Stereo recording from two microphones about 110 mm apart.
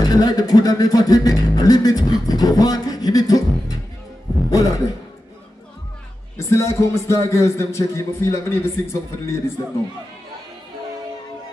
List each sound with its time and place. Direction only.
0.0 s a man's voice: 35° left (ahead or behind)
6.3 s speech: 25° left (ahead or behind)